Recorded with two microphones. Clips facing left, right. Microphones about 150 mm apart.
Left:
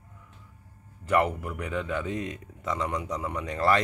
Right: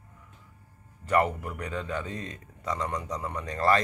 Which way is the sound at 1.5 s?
5° left (ahead or behind).